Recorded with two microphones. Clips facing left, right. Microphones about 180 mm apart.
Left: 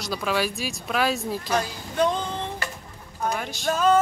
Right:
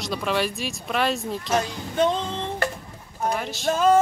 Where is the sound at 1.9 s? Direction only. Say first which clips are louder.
Right 1 dB; 25° right (ahead or behind).